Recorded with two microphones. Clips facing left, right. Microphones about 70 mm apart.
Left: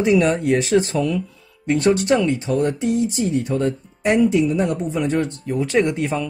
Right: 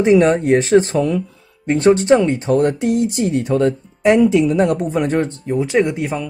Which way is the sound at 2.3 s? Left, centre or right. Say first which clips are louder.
Right 5 dB; right.